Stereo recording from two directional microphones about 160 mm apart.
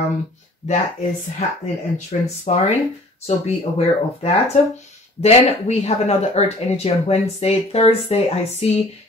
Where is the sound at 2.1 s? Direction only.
45° left (ahead or behind).